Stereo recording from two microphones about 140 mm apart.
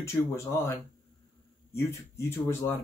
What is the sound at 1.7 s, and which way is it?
Speech, 20° left (ahead or behind).